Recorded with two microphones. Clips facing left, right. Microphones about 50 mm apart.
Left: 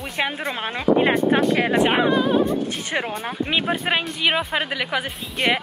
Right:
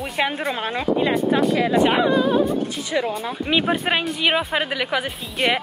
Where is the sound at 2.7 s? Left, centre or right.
Left.